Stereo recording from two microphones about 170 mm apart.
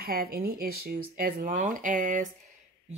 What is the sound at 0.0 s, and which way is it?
Speech, 60° right (ahead or behind).